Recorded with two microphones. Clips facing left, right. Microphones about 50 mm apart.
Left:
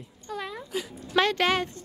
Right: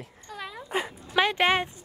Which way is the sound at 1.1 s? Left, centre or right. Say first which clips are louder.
Even; centre.